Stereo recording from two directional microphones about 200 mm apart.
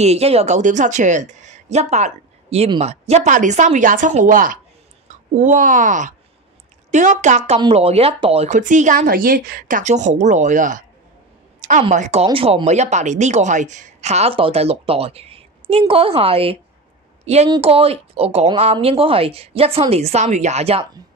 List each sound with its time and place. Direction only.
0.0 s speech: 30° right (ahead or behind)
11.9 s a woman's voice: 35° right (ahead or behind)